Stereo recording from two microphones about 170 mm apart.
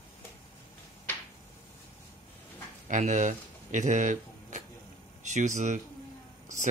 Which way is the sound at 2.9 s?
45° right (ahead or behind).